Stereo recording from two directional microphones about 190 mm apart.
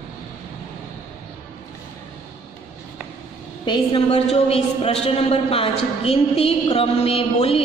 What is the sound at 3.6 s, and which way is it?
A woman's voice, 25° left (ahead or behind).